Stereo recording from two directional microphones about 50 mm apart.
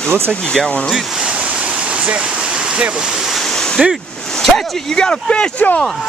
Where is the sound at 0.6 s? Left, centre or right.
Centre.